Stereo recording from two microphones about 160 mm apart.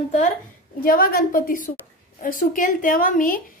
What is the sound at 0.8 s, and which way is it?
Speech, 65° left (ahead or behind).